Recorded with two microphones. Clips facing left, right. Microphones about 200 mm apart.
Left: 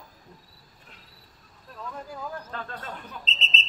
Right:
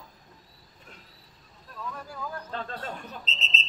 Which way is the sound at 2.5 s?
30° right (ahead or behind).